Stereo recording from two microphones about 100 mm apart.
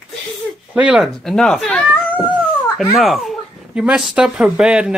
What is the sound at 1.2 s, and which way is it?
Speech, 5° left (ahead or behind).